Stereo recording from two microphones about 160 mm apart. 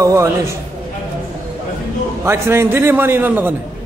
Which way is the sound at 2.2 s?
15° right (ahead or behind).